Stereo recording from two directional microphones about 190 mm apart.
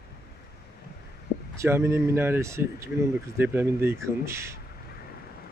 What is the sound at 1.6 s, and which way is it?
Speech, 15° right (ahead or behind).